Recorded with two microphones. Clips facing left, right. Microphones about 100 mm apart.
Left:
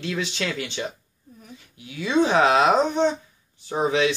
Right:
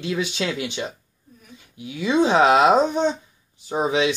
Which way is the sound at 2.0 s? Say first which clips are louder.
Right 2 dB; 20° right (ahead or behind).